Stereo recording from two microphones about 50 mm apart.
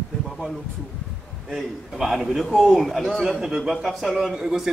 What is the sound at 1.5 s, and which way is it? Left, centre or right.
A man's voice, centre.